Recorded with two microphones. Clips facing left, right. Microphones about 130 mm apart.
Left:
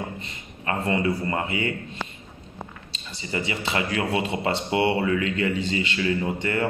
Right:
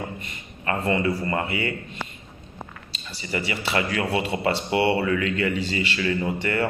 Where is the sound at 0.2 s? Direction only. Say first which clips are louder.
Right 1 dB; 20° left (ahead or behind).